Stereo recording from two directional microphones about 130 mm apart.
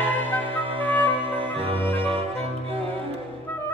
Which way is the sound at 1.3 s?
45° right (ahead or behind).